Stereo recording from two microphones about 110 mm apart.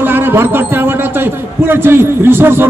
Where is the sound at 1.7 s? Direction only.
20° right (ahead or behind).